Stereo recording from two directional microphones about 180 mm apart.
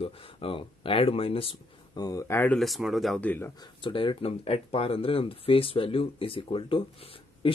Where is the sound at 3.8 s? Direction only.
25° left (ahead or behind).